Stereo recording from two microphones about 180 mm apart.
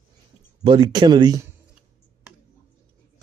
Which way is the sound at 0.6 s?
25° right (ahead or behind).